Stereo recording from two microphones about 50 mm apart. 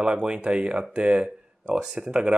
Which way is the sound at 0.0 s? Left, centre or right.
Centre.